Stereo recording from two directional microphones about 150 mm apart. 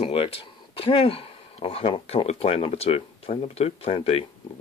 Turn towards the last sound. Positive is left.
turn(degrees=40)  # may be behind; listen again after turning